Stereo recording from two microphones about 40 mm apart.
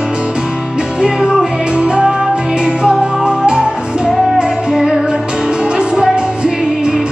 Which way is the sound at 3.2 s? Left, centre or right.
Right.